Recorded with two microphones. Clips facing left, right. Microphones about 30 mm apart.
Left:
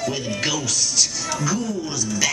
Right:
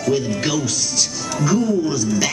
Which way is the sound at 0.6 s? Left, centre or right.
Centre.